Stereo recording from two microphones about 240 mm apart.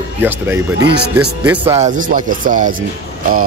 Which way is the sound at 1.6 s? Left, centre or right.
Right.